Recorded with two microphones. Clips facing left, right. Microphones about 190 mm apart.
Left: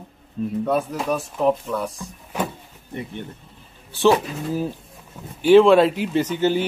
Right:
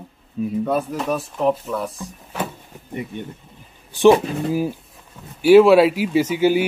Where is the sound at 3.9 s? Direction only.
15° right (ahead or behind).